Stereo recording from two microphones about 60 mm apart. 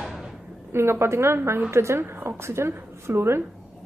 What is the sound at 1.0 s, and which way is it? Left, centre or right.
A woman's voice, right.